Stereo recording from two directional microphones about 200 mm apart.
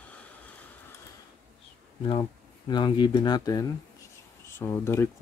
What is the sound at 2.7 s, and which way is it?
Speech, 20° left (ahead or behind).